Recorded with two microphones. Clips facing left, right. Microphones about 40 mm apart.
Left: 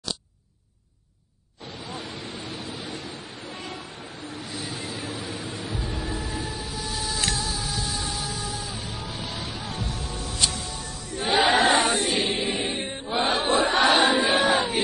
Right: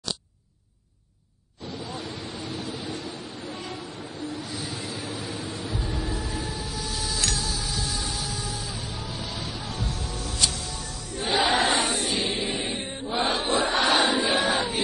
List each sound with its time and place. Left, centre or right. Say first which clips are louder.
1.9 s a sound: left 3 dB; left
3.6 s music: right 1 dB; left
6.8 s printer: left 2 dB; centre
8.0 s vehicle: left 1 dB; left
10.7 s chant: left 1 dB; left
13.2 s crowd: left 2 dB; left